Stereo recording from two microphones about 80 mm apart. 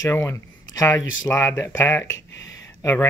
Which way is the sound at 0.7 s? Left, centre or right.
Left.